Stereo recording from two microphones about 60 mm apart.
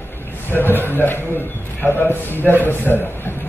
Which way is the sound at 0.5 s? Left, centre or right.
Left.